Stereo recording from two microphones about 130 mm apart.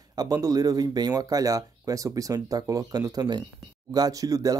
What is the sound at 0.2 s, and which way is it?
Speech, 30° right (ahead or behind).